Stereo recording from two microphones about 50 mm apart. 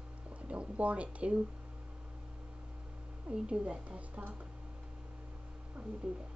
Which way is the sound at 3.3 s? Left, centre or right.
Right.